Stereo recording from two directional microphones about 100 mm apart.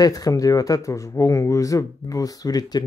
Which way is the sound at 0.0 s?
35° left (ahead or behind).